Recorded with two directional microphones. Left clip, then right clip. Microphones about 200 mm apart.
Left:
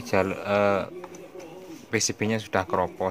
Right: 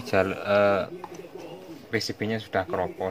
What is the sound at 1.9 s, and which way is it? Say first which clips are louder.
Speech: left 2 dB; 20° left (ahead or behind).